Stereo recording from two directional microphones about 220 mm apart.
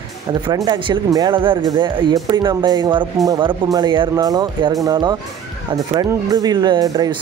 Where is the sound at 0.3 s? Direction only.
20° right (ahead or behind).